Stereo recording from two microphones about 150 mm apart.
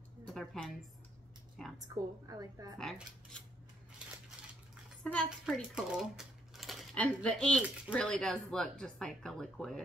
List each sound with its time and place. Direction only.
0.3 s a woman's voice: centre (ahead or behind)
2.2 s a woman's voice: 25° right (ahead or behind)
2.8 s speech: 5° left (ahead or behind)
5.0 s a woman's voice: 5° left (ahead or behind)
5.3 s speech: 5° right (ahead or behind)